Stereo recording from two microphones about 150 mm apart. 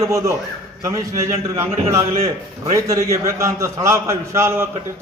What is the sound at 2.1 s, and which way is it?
Speech, 45° right (ahead or behind).